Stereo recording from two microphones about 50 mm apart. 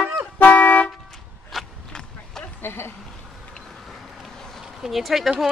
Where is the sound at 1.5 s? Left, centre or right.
Centre.